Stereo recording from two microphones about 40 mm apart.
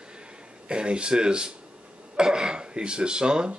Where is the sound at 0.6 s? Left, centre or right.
Right.